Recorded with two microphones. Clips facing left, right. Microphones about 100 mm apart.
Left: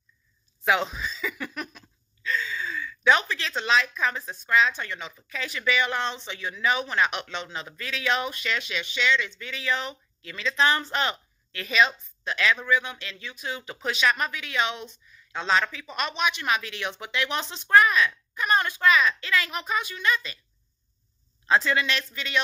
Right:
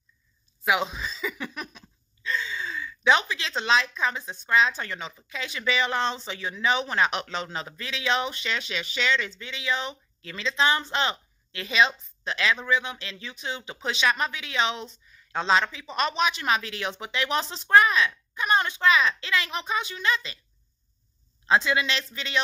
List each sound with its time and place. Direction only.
0.7 s speech: 10° right (ahead or behind)
0.9 s a sound: 30° right (ahead or behind)
1.2 s a sound: 15° right (ahead or behind)
2.2 s gasp: 25° right (ahead or behind)
3.3 s speech: 20° right (ahead or behind)
9.5 s speech: 20° right (ahead or behind)
10.2 s speech: 30° right (ahead or behind)
10.5 s a woman's voice: 20° right (ahead or behind)
21.5 s speech: 20° right (ahead or behind)